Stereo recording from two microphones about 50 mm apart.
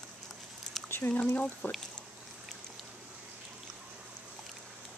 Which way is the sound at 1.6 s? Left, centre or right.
Left.